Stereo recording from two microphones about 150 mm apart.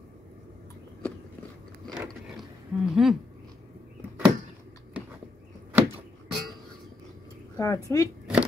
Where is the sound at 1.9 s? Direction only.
Centre (ahead or behind).